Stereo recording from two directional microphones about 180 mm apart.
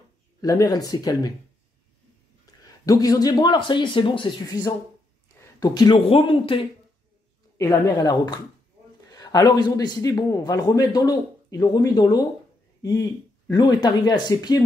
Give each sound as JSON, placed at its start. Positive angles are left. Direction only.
{"t": 0.4, "sound": "a man's voice", "side_deg": 20}
{"t": 2.6, "sound": "a man's voice", "side_deg": 20}
{"t": 7.5, "sound": "a man's voice", "side_deg": 20}
{"t": 13.5, "sound": "a man's voice", "side_deg": 25}